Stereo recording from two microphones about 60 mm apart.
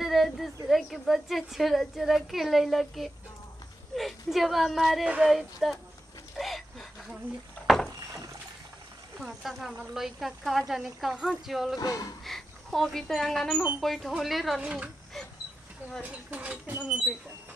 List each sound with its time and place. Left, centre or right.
0.0 s a woman's voice: centre
6.3 s a sound: centre
9.2 s a woman's voice: centre
11.8 s speech: left
12.3 s a woman's voice: centre
14.6 s speech: centre
16.0 s speech: right